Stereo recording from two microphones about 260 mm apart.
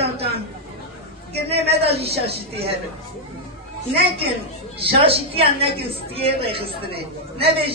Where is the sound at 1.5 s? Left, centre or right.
Right.